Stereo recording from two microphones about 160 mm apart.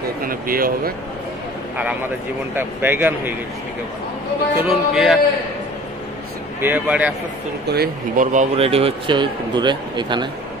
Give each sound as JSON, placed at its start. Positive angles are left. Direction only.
{"t": 0.2, "sound": "speech", "side_deg": -65}
{"t": 2.5, "sound": "speech", "side_deg": -10}
{"t": 4.6, "sound": "music", "side_deg": 0}
{"t": 6.6, "sound": "speech", "side_deg": -10}
{"t": 7.6, "sound": "speech", "side_deg": -85}
{"t": 8.2, "sound": "speech", "side_deg": -50}
{"t": 8.5, "sound": "a man's voice", "side_deg": -35}